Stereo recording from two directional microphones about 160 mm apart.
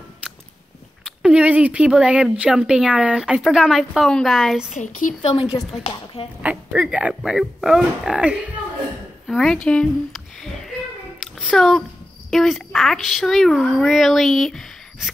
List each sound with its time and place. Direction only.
1.0 s speech: 5° right (ahead or behind)
4.7 s a woman's voice: 50° left (ahead or behind)
5.3 s a woman's voice: 35° left (ahead or behind)
6.4 s speech: 5° right (ahead or behind)
9.3 s a sound: centre (ahead or behind)
12.3 s speech: centre (ahead or behind)